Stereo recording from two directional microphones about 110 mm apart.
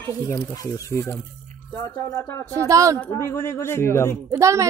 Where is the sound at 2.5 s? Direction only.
30° right (ahead or behind).